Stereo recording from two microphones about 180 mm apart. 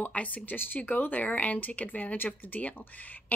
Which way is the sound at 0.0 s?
10° left (ahead or behind).